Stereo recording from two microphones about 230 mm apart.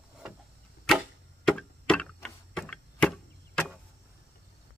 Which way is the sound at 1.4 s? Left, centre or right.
Centre.